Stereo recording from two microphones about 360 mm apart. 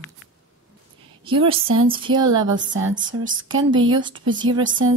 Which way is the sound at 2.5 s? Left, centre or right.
Right.